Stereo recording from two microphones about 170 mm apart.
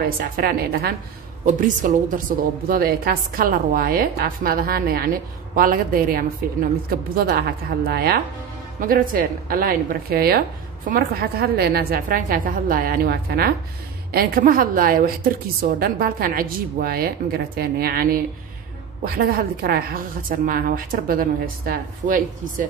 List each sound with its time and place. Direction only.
0.0 s a woman's voice: 60° right (ahead or behind)
1.4 s a woman's voice: 50° right (ahead or behind)